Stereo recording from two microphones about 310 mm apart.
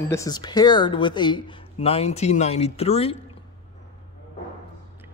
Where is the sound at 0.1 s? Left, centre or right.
Centre.